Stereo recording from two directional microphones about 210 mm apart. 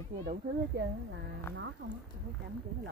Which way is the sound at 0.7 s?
50° right (ahead or behind).